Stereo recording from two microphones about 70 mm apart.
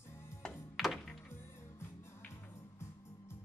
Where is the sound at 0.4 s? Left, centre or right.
Centre.